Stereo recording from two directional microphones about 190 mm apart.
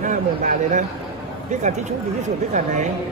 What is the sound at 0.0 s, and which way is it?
Speech, 40° right (ahead or behind).